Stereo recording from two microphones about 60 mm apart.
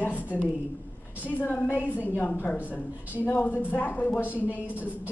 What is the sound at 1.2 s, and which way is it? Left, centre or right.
A woman's voice, left.